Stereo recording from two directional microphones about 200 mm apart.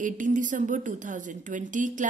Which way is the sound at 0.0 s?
40° right (ahead or behind).